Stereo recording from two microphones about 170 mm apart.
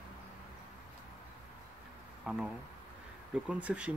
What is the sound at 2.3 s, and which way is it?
Speech, 5° right (ahead or behind).